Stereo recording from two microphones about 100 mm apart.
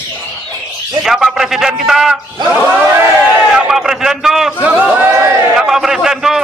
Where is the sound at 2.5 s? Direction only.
15° right (ahead or behind).